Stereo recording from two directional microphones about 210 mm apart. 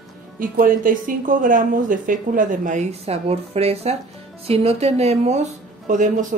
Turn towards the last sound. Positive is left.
turn(degrees=-35)  # may be behind; listen again after turning